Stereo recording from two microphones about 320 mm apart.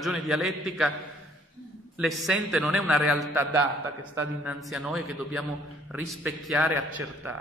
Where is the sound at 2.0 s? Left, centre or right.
Centre.